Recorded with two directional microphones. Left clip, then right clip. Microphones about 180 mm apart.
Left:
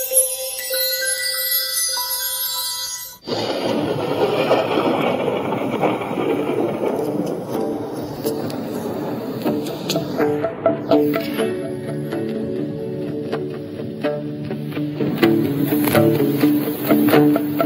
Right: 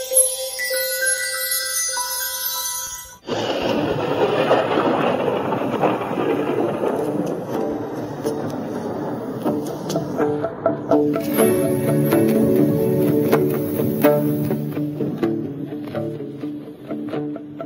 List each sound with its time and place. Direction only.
3.4 s vehicle: 15° left (ahead or behind)
9.4 s music: 15° left (ahead or behind)
11.3 s music: 45° right (ahead or behind)
15.1 s music: 25° left (ahead or behind)
15.4 s music: 45° left (ahead or behind)